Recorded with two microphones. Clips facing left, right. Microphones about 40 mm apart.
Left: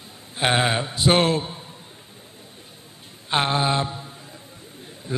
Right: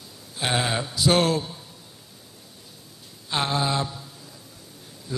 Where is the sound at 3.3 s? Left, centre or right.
Left.